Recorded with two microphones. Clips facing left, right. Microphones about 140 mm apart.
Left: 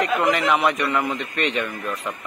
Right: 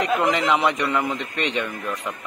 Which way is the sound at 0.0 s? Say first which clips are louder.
Even; 20° right (ahead or behind).